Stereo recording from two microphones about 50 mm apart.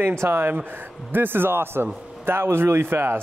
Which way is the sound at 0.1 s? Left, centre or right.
Right.